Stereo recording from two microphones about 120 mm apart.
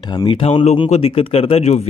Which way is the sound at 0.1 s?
35° left (ahead or behind).